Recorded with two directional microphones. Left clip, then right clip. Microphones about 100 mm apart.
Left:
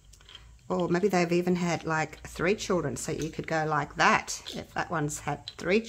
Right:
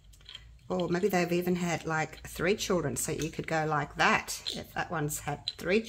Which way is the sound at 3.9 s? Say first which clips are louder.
Left 3 dB; 30° left (ahead or behind).